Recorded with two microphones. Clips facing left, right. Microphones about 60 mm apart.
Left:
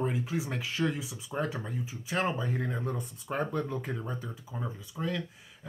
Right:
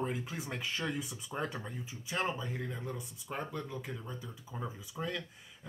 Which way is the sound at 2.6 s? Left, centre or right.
Left.